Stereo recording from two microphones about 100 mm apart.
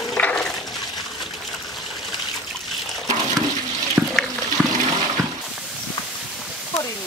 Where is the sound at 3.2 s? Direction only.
45° right (ahead or behind).